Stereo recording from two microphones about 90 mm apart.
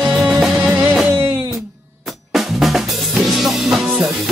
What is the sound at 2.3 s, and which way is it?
Drum kit, centre (ahead or behind).